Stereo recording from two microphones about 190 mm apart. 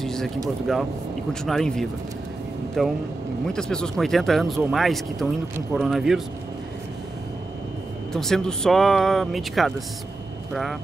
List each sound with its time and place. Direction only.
0.0 s a sound: centre (ahead or behind)
0.7 s speech: centre (ahead or behind)
8.1 s speech: 5° left (ahead or behind)